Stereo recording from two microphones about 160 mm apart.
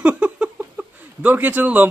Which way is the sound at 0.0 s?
5° right (ahead or behind).